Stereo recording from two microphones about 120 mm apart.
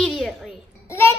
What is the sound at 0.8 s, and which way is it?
Speech, 20° left (ahead or behind).